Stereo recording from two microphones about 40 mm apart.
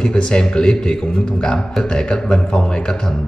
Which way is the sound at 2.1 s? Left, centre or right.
Centre.